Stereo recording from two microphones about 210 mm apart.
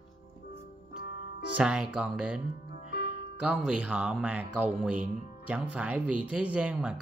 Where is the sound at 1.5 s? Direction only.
5° right (ahead or behind).